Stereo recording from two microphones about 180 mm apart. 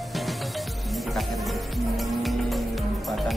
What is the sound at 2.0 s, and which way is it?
Music, centre (ahead or behind).